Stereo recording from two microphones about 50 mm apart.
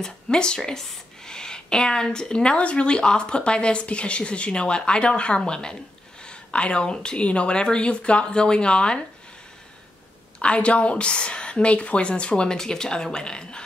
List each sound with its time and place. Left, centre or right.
0.0 s speech: centre
10.4 s speech: left